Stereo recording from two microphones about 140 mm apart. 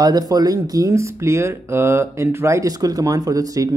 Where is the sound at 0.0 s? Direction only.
30° right (ahead or behind).